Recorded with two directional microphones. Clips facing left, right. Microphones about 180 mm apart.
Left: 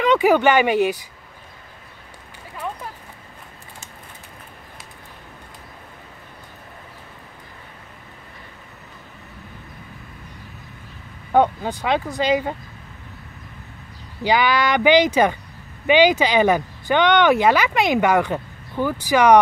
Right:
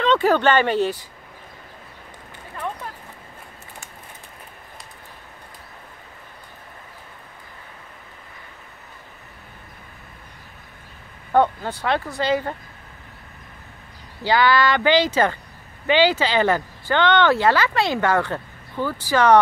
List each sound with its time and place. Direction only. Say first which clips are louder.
0.0 s speech: left 2 dB; 10° left (ahead or behind)
11.3 s speech: left 1 dB; 15° left (ahead or behind)
14.2 s speech: right 1 dB; 15° left (ahead or behind)